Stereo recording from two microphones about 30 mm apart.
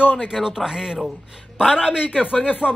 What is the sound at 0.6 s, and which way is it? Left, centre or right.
Speech, centre.